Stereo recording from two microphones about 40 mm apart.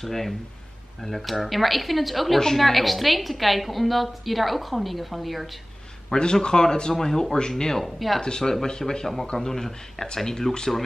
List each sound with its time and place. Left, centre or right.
0.0 s a man's voice: centre
6.1 s a man's voice: left
7.8 s a woman's voice: centre
8.2 s a man's voice: centre